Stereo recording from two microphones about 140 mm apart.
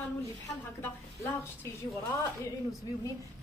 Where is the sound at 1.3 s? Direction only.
20° left (ahead or behind).